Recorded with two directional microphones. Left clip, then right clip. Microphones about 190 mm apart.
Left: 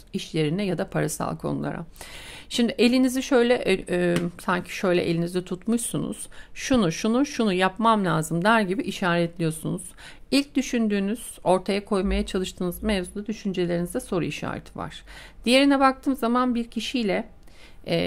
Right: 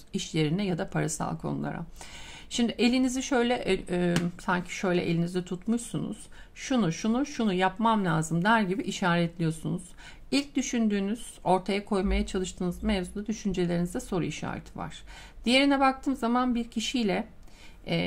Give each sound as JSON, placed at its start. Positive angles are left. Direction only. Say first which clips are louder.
{"t": 0.1, "sound": "speech", "louder": "left 3 dB", "side_deg": 20}